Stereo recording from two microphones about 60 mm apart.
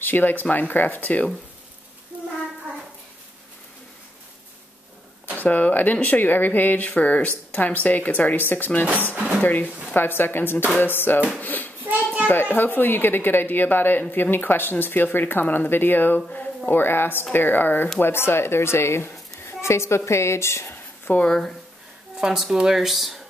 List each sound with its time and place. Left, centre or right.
0.0 s speech: left
5.4 s speech: left
8.8 s speech: right
9.4 s speech: left
16.2 s a sound: left
16.7 s a woman's voice: left
22.2 s speech: centre